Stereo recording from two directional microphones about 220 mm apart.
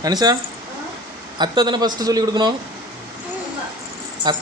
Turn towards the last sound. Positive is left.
turn(degrees=-20)  # may be behind; listen again after turning